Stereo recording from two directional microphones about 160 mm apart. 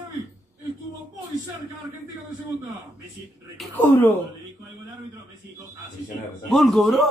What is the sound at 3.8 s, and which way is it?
Speech, 10° left (ahead or behind).